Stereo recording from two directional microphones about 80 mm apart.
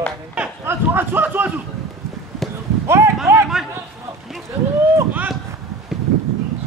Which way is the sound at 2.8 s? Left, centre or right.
Right.